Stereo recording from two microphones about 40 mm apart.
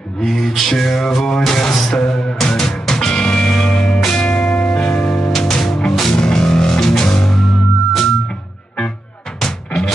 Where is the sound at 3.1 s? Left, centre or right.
Left.